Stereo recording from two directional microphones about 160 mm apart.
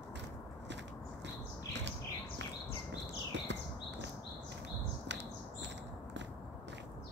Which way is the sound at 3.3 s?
90° right.